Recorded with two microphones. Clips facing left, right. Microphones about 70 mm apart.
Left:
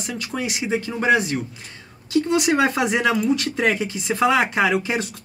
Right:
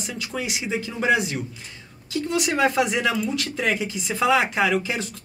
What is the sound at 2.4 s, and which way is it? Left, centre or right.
Speech, centre.